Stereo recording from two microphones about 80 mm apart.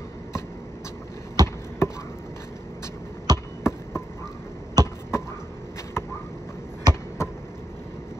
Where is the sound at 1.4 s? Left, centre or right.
Right.